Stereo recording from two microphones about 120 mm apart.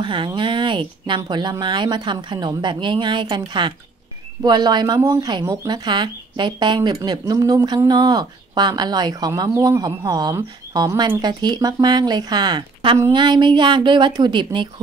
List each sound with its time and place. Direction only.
0.0 s speech: 40° right (ahead or behind)
5.7 s speech: 40° right (ahead or behind)